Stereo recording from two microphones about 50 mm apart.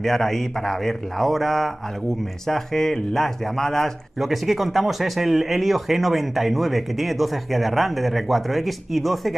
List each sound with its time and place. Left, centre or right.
0.0 s a man's voice: centre
4.2 s speech: centre